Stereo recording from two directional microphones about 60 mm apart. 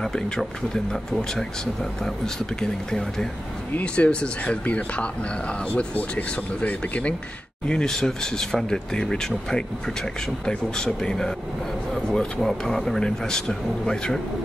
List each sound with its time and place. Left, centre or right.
0.0 s speech: centre
2.0 s speech: centre
3.7 s speech: left
7.6 s speech: centre